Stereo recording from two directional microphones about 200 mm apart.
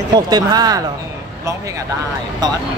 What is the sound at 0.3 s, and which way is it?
Speech, 20° right (ahead or behind).